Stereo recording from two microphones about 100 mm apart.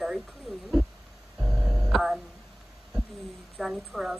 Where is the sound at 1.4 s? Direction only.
Centre (ahead or behind).